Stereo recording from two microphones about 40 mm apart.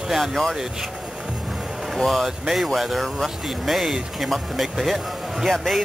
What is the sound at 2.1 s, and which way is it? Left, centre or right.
Speech, centre.